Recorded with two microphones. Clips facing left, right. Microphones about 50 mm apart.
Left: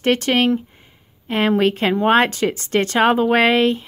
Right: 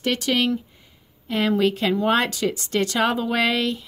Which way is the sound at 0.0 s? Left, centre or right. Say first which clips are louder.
Left 5 dB; left.